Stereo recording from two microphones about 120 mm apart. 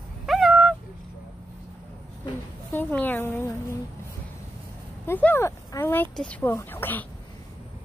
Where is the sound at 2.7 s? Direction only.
15° left (ahead or behind).